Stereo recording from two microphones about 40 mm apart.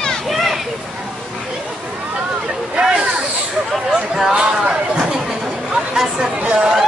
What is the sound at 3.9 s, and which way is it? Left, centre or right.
Chatter, centre.